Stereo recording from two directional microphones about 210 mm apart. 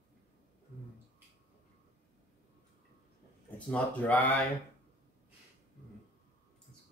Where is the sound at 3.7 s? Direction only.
5° left (ahead or behind).